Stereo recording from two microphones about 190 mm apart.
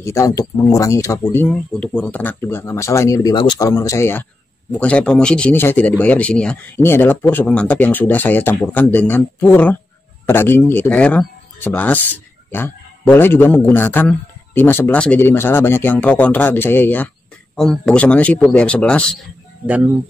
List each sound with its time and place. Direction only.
0.0 s speech: 15° left (ahead or behind)
19.6 s speech: 10° right (ahead or behind)